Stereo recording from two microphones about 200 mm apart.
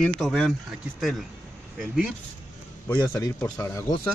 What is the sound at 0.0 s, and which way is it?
Speech, 5° left (ahead or behind).